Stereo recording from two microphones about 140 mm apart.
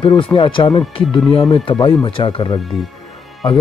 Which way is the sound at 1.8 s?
35° left (ahead or behind).